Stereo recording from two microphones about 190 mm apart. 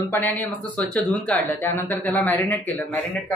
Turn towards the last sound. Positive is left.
turn(degrees=5)  # may be behind; listen again after turning